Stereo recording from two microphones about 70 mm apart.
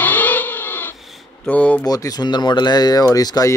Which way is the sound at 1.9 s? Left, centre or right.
Left.